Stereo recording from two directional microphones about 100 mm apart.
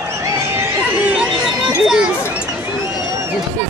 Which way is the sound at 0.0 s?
25° right (ahead or behind).